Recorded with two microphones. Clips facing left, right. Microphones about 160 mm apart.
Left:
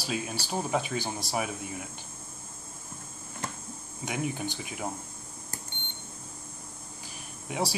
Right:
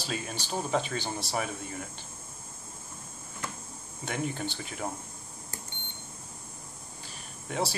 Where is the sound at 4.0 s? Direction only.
10° left (ahead or behind).